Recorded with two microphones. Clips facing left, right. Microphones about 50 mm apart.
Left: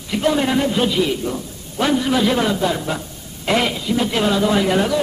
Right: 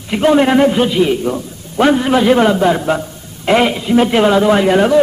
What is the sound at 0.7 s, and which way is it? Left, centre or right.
A man's voice, right.